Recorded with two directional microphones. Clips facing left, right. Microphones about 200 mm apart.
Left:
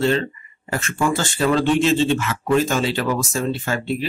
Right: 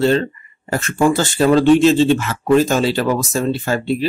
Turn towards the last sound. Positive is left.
turn(degrees=-35)  # may be behind; listen again after turning